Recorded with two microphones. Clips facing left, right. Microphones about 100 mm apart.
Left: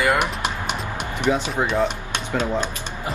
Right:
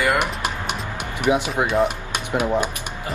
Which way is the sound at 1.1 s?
10° right (ahead or behind).